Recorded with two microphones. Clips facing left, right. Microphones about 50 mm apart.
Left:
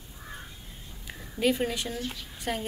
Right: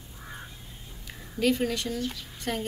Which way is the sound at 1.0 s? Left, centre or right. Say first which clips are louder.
Even; centre.